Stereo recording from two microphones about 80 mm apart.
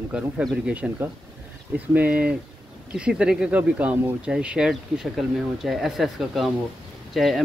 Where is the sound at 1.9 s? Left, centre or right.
Centre.